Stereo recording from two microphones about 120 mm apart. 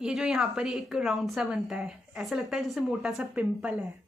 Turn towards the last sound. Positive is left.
turn(degrees=-10)  # may be behind; listen again after turning